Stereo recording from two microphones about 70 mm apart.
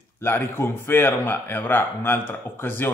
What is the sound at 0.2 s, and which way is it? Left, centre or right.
Speech, left.